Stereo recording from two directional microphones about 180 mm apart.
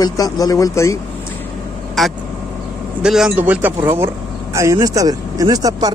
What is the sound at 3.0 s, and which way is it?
Speech, 5° right (ahead or behind).